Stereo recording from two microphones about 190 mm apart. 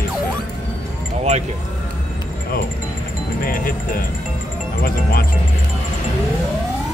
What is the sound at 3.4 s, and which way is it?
Speech, 50° left (ahead or behind).